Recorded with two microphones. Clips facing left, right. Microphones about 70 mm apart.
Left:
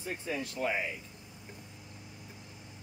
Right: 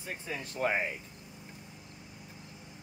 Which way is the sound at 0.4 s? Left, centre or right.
Right.